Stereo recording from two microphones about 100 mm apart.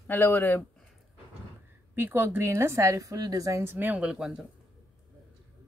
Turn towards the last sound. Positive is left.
turn(degrees=-5)  # may be behind; listen again after turning